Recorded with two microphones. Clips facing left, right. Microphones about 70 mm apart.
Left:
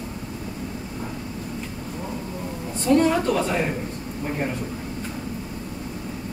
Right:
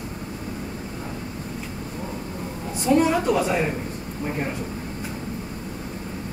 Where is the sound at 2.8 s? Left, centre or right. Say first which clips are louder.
Even; centre.